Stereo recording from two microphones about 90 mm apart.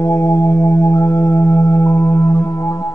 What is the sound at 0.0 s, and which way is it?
Music, 30° left (ahead or behind).